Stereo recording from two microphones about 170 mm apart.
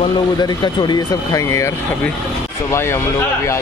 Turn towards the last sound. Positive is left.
turn(degrees=15)  # may be behind; listen again after turning